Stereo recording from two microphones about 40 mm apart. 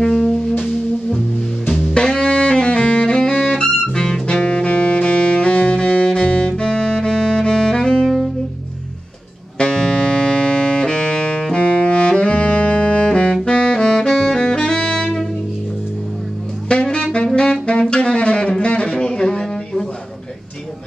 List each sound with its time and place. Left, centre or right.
0.1 s music: centre
2.0 s saxophone: left
3.3 s music: centre; by 6.5 s left
6.5 s music: centre
9.6 s music: centre
11.5 s saxophone: left
16.6 s saxophone: left
18.6 s a sound: left